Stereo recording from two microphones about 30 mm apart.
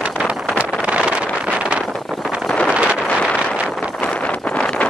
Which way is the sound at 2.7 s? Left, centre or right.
Right.